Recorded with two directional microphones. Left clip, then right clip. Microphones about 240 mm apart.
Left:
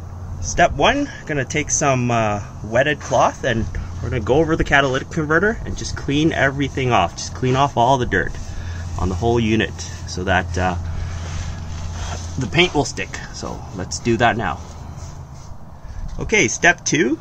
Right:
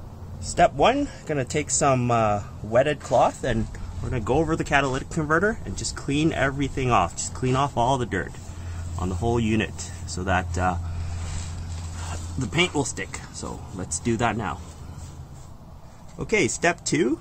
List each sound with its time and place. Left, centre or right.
0.6 s speech: centre
12.5 s speech: centre
16.2 s speech: centre